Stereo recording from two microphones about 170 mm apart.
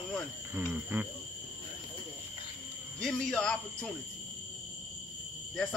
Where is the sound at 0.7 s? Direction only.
10° right (ahead or behind).